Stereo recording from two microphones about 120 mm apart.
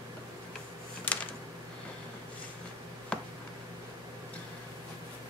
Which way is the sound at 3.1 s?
10° left (ahead or behind).